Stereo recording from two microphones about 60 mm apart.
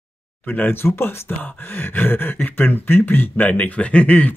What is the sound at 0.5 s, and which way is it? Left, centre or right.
Speech, left.